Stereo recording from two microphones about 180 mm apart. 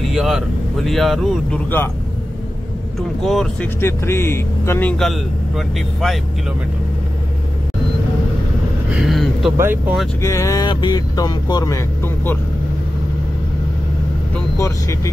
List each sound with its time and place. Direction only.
0.0 s vehicle: centre (ahead or behind)
3.2 s speech: centre (ahead or behind)
3.8 s speech: 15° left (ahead or behind)
8.9 s a sound: centre (ahead or behind)
9.6 s speech: 10° right (ahead or behind)
10.2 s speech: 15° left (ahead or behind)
14.3 s speech: 15° left (ahead or behind)